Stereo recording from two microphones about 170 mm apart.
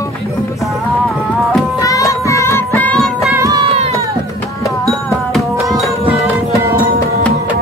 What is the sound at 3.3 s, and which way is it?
Music, 20° right (ahead or behind).